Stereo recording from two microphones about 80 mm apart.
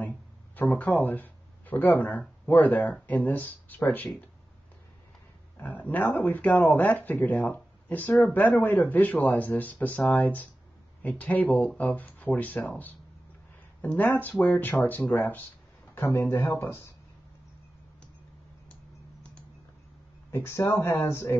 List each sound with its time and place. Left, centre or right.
0.6 s speech: centre
5.6 s speech: left
20.2 s speech: left